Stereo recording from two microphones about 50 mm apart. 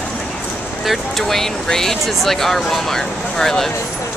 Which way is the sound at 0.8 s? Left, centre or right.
Centre.